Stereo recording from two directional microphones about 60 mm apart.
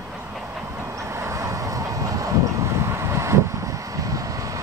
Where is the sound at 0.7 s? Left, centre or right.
Right.